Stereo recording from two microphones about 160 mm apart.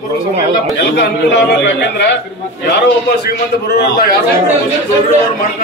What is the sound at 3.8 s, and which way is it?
Speech, 70° left (ahead or behind).